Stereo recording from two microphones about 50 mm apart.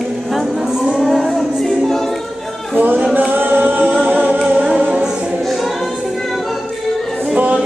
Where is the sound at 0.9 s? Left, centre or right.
Centre.